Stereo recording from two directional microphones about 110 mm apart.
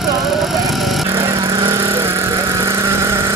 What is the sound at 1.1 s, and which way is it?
Vehicle, 25° right (ahead or behind).